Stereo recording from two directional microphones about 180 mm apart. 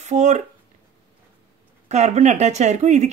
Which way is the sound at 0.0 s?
40° right (ahead or behind).